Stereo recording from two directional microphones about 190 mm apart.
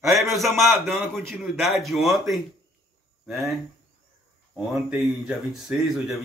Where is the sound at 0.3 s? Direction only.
Centre (ahead or behind).